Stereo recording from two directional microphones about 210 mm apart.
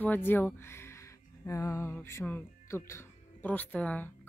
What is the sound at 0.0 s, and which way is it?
A woman's voice, 10° left (ahead or behind).